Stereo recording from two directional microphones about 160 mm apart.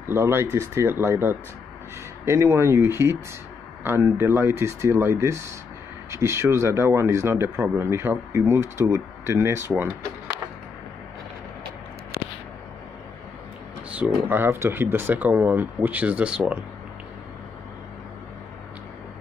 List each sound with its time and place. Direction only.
0.1 s speech: 15° right (ahead or behind)
13.8 s speech: 10° right (ahead or behind)